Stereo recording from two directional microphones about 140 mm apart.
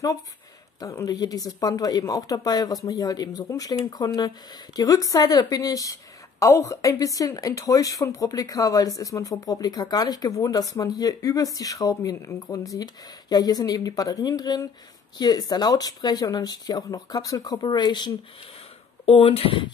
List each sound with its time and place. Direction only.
0.7 s a woman's voice: 25° left (ahead or behind); by 19.7 s 40° left (ahead or behind)